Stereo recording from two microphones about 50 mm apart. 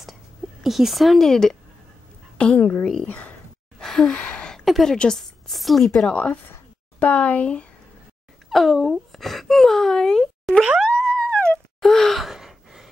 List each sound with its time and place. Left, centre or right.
0.6 s a woman's voice: centre
2.3 s a woman's voice: left
3.8 s gasp: centre
4.1 s a sound: left
4.6 s a woman's voice: centre
6.0 s speech: left
8.5 s speech: centre
10.8 s a sound: centre
11.8 s sigh: centre